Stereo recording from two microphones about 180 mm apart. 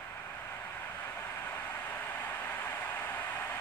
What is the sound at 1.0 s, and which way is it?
Vehicle, 10° left (ahead or behind).